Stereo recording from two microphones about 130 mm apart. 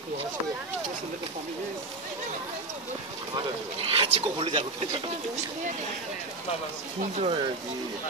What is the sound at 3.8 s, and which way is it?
Speech, 50° right (ahead or behind).